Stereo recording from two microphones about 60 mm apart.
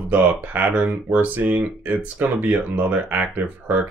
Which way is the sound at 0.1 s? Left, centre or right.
Right.